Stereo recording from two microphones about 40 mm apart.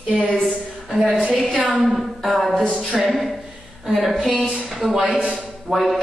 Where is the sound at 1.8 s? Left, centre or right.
Centre.